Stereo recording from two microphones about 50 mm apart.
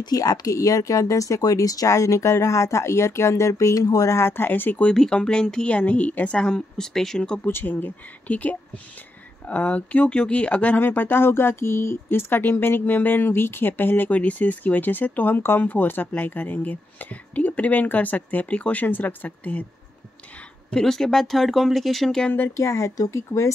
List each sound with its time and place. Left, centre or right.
0.6 s speech: left
4.9 s speech: centre
5.7 s a woman's voice: left
6.9 s speech: centre
7.4 s speech: left
8.3 s a woman's voice: left
20.7 s speech: centre
22.6 s speech: left